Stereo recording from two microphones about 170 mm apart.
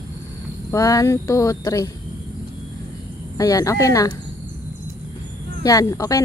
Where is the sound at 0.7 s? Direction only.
20° left (ahead or behind).